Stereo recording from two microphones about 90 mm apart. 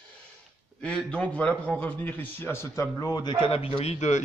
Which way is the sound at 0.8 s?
15° left (ahead or behind).